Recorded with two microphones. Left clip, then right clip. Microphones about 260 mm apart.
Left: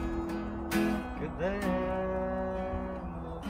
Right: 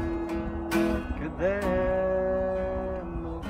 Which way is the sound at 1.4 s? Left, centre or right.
Centre.